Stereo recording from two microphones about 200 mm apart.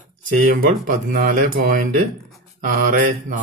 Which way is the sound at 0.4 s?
45° right (ahead or behind).